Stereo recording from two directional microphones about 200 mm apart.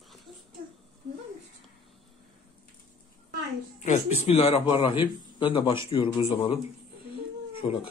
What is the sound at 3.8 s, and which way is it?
A man's voice, 35° left (ahead or behind).